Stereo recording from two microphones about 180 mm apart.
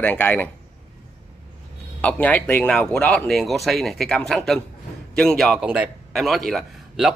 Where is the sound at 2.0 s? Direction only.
10° left (ahead or behind).